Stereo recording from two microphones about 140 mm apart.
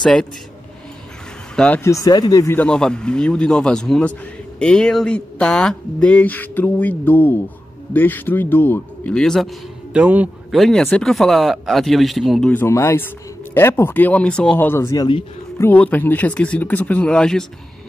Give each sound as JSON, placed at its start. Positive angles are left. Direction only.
{"t": 0.0, "sound": "speech", "side_deg": 5}
{"t": 1.6, "sound": "speech", "side_deg": 10}
{"t": 1.9, "sound": "speech", "side_deg": 25}
{"t": 2.5, "sound": "speech", "side_deg": 10}
{"t": 9.9, "sound": "a man's voice", "side_deg": -10}
{"t": 10.5, "sound": "speech", "side_deg": 0}
{"t": 12.4, "sound": "speech", "side_deg": 15}
{"t": 15.6, "sound": "speech", "side_deg": 10}